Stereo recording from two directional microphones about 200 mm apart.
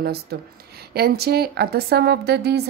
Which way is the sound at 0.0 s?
50° right (ahead or behind).